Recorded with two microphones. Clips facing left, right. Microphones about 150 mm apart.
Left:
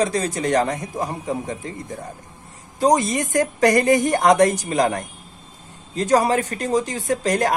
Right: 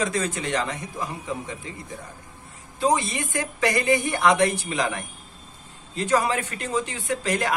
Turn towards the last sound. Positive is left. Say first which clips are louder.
# left 5 dB
turn(degrees=40)  # may be behind; listen again after turning